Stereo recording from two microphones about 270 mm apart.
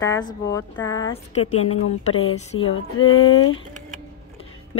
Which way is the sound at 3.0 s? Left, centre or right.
Left.